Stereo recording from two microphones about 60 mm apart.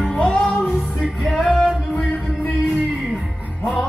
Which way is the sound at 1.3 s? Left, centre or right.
Centre.